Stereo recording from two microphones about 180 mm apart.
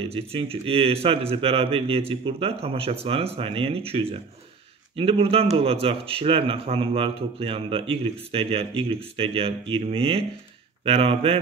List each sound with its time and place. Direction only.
0.0 s speech: 30° right (ahead or behind)